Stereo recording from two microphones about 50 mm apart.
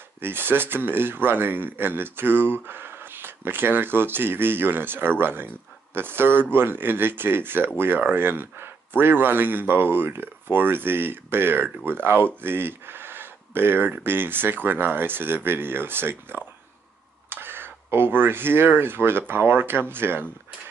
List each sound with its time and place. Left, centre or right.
0.2 s speech: right